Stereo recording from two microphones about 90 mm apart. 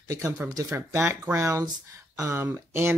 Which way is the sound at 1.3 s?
35° right (ahead or behind).